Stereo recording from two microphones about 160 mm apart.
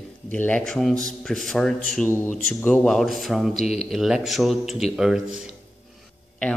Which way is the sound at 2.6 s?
5° left (ahead or behind).